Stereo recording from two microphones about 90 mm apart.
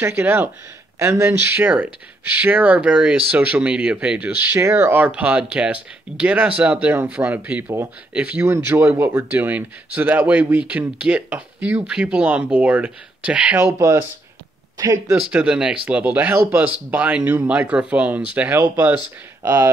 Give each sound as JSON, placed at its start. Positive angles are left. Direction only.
{"t": 0.0, "sound": "speech", "side_deg": -25}
{"t": 4.5, "sound": "speech", "side_deg": -30}
{"t": 8.5, "sound": "speech", "side_deg": -25}
{"t": 13.6, "sound": "speech", "side_deg": -30}
{"t": 15.3, "sound": "speech", "side_deg": -10}